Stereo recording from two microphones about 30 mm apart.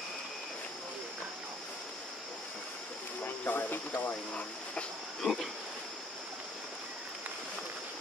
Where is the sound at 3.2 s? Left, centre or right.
Left.